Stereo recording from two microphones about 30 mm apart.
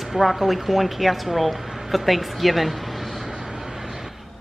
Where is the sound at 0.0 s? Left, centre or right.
Centre.